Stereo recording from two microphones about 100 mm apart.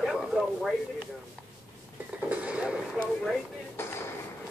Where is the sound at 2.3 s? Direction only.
15° right (ahead or behind).